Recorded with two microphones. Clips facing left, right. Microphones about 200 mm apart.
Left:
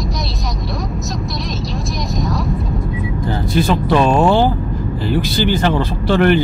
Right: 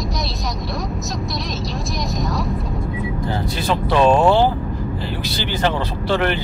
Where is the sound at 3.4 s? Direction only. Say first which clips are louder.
Left 7 dB; 50° left (ahead or behind).